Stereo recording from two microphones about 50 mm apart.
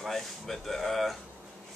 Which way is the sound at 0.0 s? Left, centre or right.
Centre.